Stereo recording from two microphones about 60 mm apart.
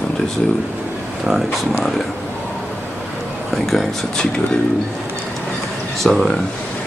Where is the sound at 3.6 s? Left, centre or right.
Centre.